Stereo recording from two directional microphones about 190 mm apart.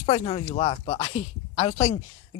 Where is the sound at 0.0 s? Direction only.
25° left (ahead or behind).